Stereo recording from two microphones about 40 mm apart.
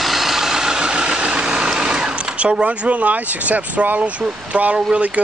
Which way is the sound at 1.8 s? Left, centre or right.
Right.